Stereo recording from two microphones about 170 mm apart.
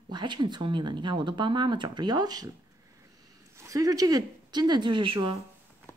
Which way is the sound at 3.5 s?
20° right (ahead or behind).